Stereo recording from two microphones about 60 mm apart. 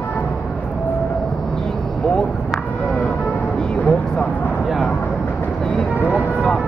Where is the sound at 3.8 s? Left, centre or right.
Left.